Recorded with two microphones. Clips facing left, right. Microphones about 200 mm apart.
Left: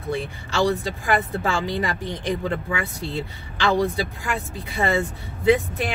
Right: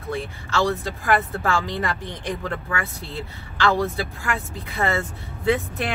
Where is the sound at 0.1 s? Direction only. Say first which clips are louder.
Even; 15° left (ahead or behind).